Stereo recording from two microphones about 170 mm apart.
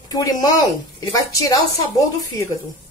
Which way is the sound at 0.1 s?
20° left (ahead or behind).